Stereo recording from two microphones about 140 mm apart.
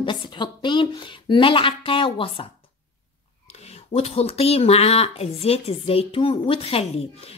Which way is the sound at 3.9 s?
45° left (ahead or behind).